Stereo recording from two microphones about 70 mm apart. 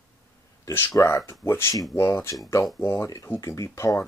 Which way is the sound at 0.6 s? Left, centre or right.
Left.